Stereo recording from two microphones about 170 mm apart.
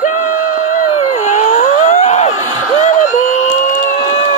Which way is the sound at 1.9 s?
40° left (ahead or behind).